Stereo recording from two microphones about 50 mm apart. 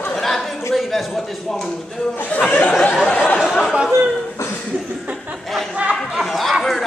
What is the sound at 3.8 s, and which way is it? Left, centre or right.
Chatter, centre.